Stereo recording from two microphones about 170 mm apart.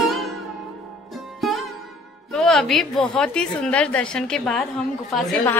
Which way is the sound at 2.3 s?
Centre (ahead or behind).